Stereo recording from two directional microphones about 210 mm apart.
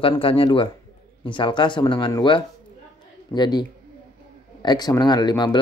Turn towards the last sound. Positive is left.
turn(degrees=20)  # may be behind; listen again after turning